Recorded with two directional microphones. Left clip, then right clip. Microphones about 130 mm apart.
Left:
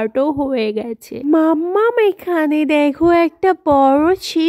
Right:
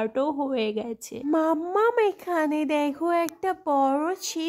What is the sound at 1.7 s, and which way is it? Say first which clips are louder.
A woman's voice: left 6 dB; 30° left (ahead or behind).